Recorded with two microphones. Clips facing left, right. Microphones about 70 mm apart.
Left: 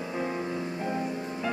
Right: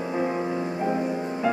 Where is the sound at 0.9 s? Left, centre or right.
Centre.